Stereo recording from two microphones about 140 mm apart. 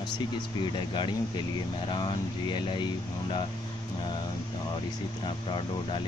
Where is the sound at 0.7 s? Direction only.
35° left (ahead or behind).